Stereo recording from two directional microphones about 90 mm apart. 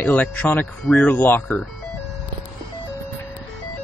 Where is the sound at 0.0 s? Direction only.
20° left (ahead or behind).